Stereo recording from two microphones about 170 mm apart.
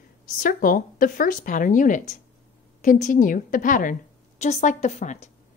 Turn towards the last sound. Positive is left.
turn(degrees=40)  # may be behind; listen again after turning